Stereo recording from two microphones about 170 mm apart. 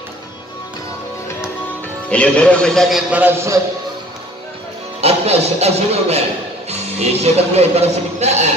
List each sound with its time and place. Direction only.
2.0 s a man's voice: 5° left (ahead or behind); by 3.6 s 15° right (ahead or behind)
5.0 s speech: 40° right (ahead or behind)